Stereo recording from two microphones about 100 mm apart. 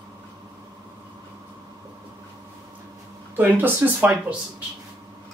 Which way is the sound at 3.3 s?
20° right (ahead or behind).